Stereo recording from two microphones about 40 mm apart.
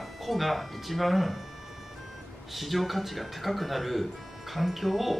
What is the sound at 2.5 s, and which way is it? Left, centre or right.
Speech, centre.